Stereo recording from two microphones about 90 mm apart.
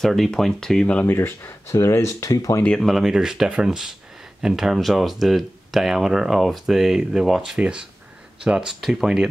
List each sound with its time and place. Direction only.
0.0 s speech: 5° left (ahead or behind)
1.1 s speech: 25° left (ahead or behind)
2.8 s speech: centre (ahead or behind)